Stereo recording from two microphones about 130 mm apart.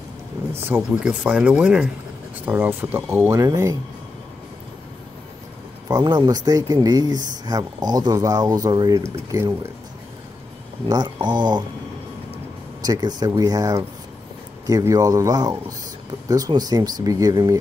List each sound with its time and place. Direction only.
0.5 s speech: 15° right (ahead or behind)
5.9 s speech: 30° right (ahead or behind)
10.9 s speech: 35° right (ahead or behind)
12.8 s speech: 30° right (ahead or behind)